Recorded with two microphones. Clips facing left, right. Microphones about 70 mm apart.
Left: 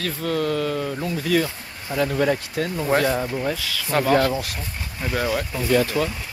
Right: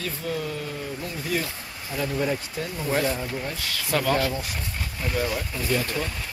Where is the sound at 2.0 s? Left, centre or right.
Left.